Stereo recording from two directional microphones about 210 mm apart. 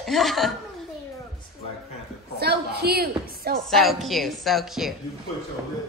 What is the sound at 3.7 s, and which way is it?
A woman's voice, centre (ahead or behind).